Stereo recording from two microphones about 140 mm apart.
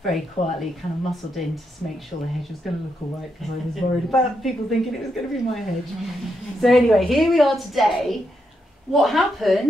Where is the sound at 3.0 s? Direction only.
50° left (ahead or behind).